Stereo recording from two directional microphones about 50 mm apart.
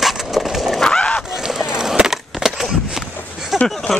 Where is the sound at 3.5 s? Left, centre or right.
Centre.